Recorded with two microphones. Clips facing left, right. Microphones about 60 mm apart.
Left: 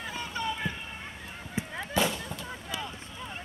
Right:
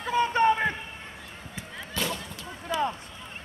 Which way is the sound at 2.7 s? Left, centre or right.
Right.